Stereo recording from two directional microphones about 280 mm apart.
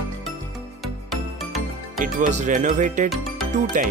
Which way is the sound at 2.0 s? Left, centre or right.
Right.